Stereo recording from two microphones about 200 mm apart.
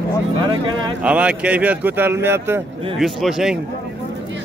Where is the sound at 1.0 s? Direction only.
5° right (ahead or behind).